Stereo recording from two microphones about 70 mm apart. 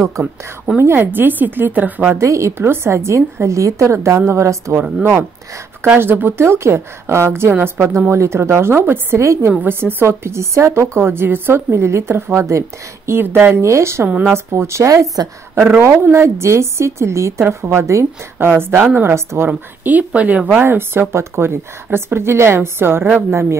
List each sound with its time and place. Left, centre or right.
0.7 s speech: right
2.1 s a woman's voice: right
5.9 s a woman's voice: right
9.2 s a woman's voice: right
9.5 s a woman's voice: right
15.5 s a woman's voice: right
20.6 s a woman's voice: right